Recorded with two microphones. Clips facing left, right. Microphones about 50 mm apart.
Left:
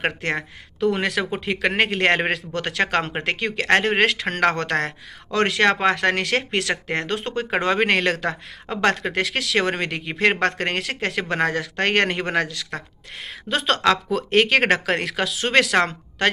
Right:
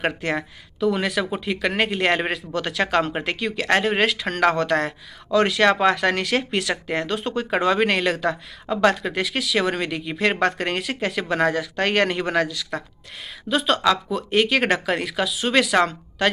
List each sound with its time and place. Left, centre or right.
0.0 s speech: left
0.8 s a woman's voice: left
1.4 s a woman's voice: left
13.5 s a woman's voice: left